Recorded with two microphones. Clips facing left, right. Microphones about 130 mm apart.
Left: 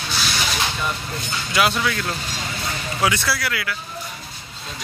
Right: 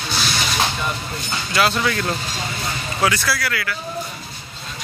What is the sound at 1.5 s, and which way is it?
Speech, 15° left (ahead or behind).